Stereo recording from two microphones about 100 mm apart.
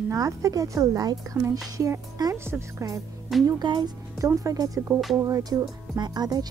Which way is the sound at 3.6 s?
45° right (ahead or behind).